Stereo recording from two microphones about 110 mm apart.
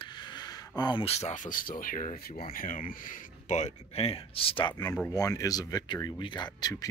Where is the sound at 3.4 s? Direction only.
90° left; by 4.7 s 55° left (ahead or behind).